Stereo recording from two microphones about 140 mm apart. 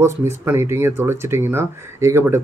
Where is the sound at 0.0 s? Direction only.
20° right (ahead or behind).